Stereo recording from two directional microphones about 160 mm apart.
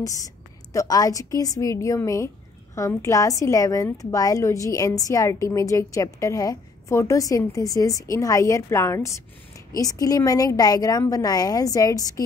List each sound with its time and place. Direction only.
0.7 s a woman's voice: 20° left (ahead or behind)